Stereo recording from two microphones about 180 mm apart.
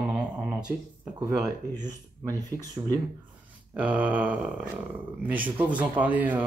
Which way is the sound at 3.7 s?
10° right (ahead or behind).